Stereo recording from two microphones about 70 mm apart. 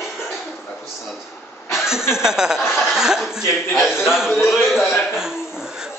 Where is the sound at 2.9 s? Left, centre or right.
Centre.